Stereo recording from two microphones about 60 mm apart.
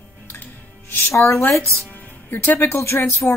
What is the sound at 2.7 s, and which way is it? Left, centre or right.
Speech, left.